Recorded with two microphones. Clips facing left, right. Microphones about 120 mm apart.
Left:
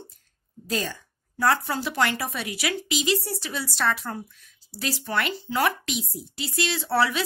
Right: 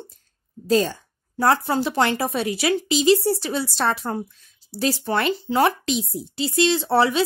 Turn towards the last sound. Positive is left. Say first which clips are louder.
# right 5 dB
turn(degrees=-25)  # may be behind; listen again after turning